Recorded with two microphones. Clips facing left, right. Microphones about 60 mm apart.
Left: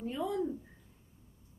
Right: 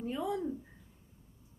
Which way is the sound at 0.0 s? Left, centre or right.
Centre.